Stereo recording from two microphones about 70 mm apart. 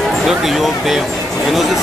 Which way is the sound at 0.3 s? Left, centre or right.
Centre.